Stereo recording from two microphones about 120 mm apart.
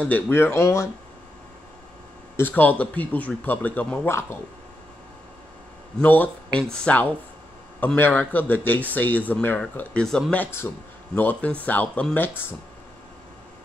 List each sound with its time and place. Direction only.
0.0 s speech: 15° left (ahead or behind)
2.3 s speech: 15° left (ahead or behind)
5.9 s speech: 15° left (ahead or behind)